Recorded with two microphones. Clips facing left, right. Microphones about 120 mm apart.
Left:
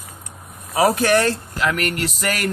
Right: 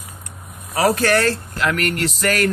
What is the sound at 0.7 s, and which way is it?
Speech, 15° left (ahead or behind).